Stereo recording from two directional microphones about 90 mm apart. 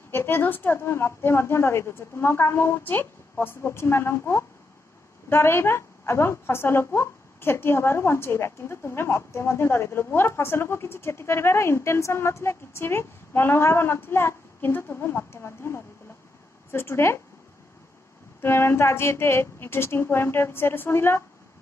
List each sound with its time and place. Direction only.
0.1 s a woman's voice: 25° left (ahead or behind)
18.4 s a woman's voice: 30° left (ahead or behind)